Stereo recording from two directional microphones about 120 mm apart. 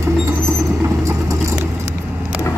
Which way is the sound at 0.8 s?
25° right (ahead or behind).